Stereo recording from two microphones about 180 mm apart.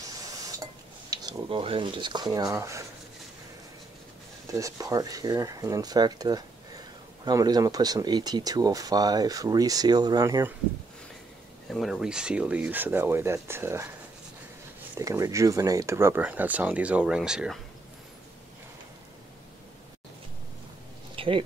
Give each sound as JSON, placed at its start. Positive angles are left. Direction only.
{"t": 1.1, "sound": "speech", "side_deg": -20}
{"t": 4.5, "sound": "speech", "side_deg": -20}
{"t": 11.7, "sound": "speech", "side_deg": 0}
{"t": 21.2, "sound": "a sound", "side_deg": -30}